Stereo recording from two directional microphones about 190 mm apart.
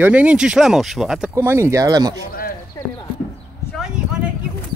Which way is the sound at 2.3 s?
50° left (ahead or behind).